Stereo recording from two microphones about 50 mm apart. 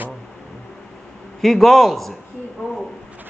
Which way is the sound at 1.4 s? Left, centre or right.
Centre.